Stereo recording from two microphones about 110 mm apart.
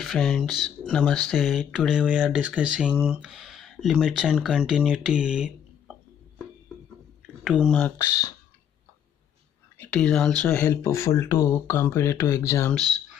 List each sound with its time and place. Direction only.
0.0 s speech: centre (ahead or behind)
7.4 s speech: 5° right (ahead or behind)
8.0 s speech: 30° left (ahead or behind)
9.8 s speech: 10° left (ahead or behind)
10.7 s speech: 25° left (ahead or behind)
12.7 s speech: 5° left (ahead or behind)